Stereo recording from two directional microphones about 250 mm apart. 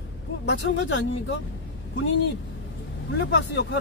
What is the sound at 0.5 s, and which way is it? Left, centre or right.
Speech, left.